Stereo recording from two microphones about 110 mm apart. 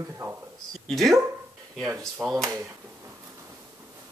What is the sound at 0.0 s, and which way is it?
Speech, 20° right (ahead or behind).